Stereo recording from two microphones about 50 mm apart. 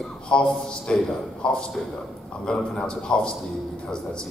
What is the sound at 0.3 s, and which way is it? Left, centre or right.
A man's voice, centre.